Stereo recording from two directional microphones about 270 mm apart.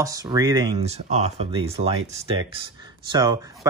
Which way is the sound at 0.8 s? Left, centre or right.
Right.